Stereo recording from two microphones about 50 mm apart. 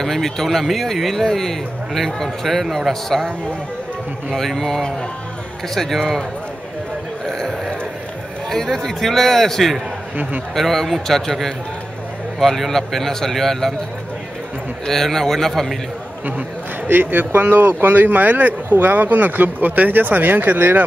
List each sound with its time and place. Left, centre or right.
0.0 s speech: centre
7.2 s a sound: centre
8.5 s a man's voice: centre
14.9 s speech: centre
16.8 s speech: right